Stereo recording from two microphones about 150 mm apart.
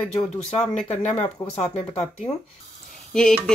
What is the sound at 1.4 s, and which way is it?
Speech, 20° left (ahead or behind).